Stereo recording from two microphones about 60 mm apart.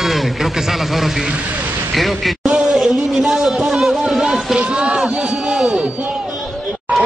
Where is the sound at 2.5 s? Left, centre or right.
Centre.